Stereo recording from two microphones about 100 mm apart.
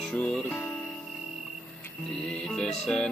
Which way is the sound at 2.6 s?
10° left (ahead or behind).